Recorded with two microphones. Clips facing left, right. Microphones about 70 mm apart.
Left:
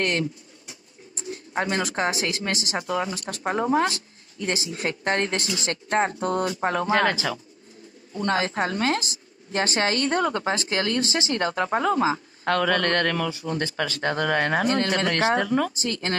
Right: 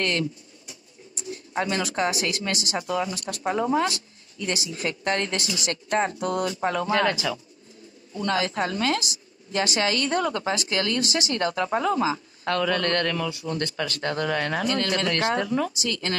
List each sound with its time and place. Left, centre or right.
0.0 s a woman's voice: left
13.8 s speech: left
14.2 s a woman's voice: left
15.4 s a woman's voice: left